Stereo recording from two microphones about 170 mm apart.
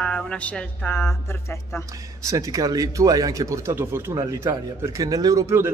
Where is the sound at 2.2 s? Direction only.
20° right (ahead or behind).